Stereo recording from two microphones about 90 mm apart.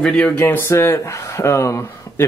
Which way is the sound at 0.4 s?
25° left (ahead or behind).